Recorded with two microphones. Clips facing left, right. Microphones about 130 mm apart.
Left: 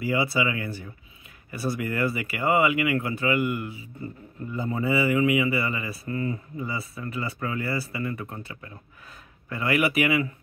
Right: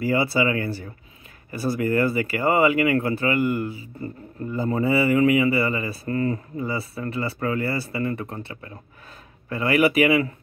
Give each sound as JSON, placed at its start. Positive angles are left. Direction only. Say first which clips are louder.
{"t": 0.0, "sound": "speech", "louder": "right 4 dB", "side_deg": -30}
{"t": 6.0, "sound": "speech", "louder": "right 5 dB", "side_deg": -40}